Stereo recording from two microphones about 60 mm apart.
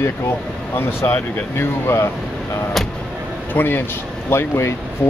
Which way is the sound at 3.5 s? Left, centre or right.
Left.